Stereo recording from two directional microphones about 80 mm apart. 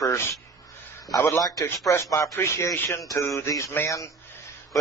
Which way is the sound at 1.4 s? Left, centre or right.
Left.